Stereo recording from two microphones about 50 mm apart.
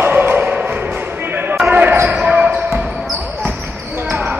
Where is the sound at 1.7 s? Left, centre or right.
Right.